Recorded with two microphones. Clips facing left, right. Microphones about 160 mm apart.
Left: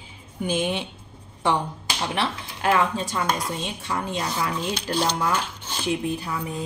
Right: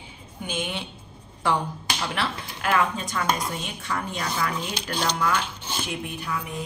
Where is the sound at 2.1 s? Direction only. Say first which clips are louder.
Left 2 dB; 30° left (ahead or behind).